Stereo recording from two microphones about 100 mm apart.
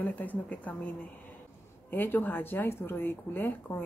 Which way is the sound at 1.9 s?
20° left (ahead or behind).